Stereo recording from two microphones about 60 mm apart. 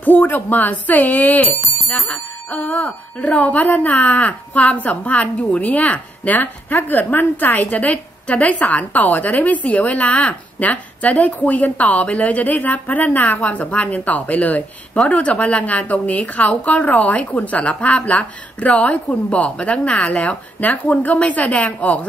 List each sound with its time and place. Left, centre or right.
0.0 s a woman's voice: left